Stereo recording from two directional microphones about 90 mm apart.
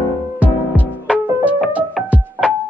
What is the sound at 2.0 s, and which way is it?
Music, centre (ahead or behind).